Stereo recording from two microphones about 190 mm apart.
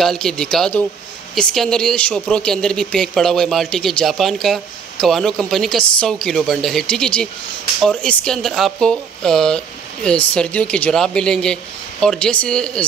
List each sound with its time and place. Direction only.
0.0 s speech: centre (ahead or behind)